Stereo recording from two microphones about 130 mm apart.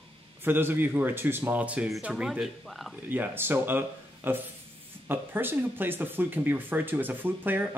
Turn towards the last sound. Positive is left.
turn(degrees=-15)  # may be behind; listen again after turning